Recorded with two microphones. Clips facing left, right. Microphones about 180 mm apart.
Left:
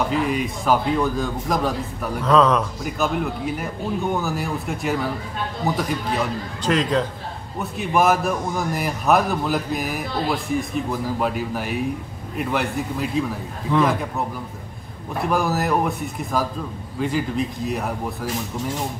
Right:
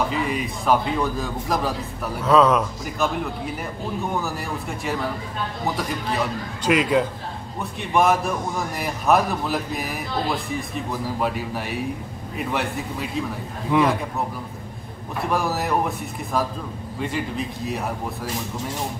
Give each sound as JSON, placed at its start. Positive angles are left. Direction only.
{"t": 0.1, "sound": "a man's voice", "side_deg": 0}
{"t": 7.8, "sound": "a man's voice", "side_deg": 0}
{"t": 15.2, "sound": "a man's voice", "side_deg": 0}